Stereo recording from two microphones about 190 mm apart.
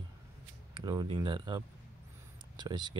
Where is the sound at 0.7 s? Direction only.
25° right (ahead or behind).